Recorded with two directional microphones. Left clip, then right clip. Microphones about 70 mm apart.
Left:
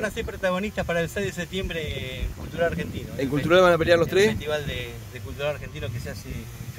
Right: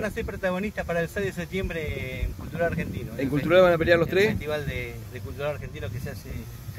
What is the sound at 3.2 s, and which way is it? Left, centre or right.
Speech, centre.